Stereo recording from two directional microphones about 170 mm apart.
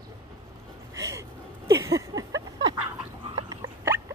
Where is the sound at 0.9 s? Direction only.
20° right (ahead or behind).